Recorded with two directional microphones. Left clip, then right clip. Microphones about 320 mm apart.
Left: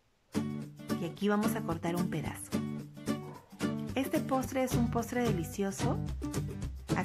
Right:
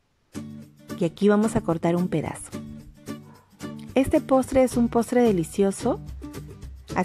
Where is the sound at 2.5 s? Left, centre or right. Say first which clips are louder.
Left 1 dB; centre.